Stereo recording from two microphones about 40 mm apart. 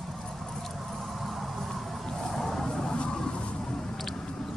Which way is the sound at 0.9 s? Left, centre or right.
Centre.